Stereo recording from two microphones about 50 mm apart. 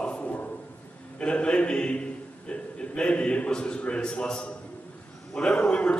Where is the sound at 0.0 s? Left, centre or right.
Left.